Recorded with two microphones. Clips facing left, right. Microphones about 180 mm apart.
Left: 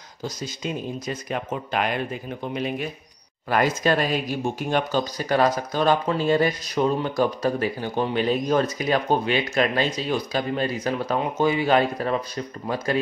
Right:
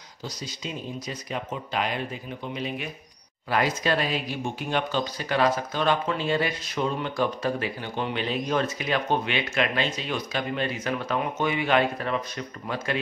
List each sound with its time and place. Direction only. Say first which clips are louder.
0.2 s speech: left 5 dB; 50° left (ahead or behind)
3.4 s speech: left 4 dB; 45° left (ahead or behind)